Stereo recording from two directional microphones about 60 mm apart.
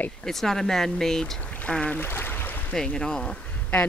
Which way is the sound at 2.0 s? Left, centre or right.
Left.